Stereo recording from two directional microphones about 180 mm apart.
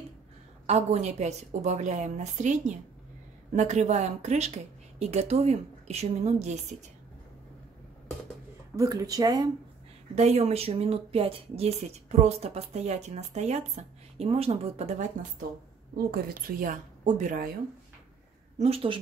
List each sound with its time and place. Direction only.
0.7 s speech: 40° right (ahead or behind)
8.7 s speech: 20° right (ahead or behind)
10.1 s speech: 40° right (ahead or behind)
16.1 s a woman's voice: 55° right (ahead or behind)
18.6 s speech: 30° right (ahead or behind)